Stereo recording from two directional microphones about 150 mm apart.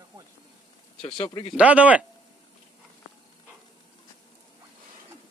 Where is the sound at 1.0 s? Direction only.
40° left (ahead or behind).